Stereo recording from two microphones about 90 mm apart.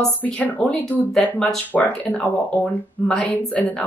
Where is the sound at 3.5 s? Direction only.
15° left (ahead or behind).